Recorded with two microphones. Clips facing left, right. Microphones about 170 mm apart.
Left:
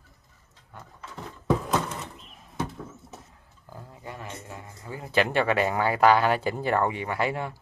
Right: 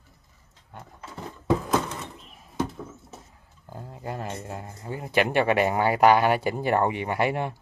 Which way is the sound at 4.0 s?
40° right (ahead or behind).